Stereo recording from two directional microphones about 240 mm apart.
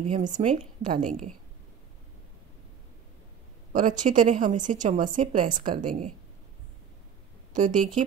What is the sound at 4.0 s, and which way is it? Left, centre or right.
A woman's voice, right.